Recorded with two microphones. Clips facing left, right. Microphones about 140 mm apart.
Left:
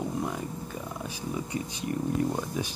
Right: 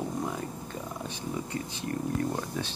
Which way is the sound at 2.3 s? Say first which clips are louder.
Left 2 dB; 10° left (ahead or behind).